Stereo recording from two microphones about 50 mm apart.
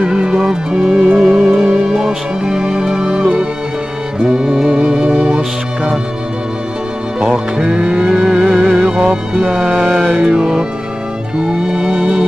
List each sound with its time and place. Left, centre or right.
0.0 s music: centre
7.2 s music: centre